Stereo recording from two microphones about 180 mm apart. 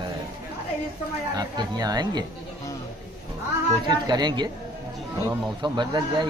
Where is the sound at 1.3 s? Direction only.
20° right (ahead or behind).